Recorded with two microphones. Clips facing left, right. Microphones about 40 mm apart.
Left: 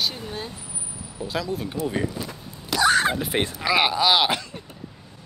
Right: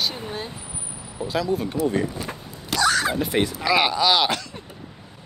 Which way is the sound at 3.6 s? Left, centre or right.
Centre.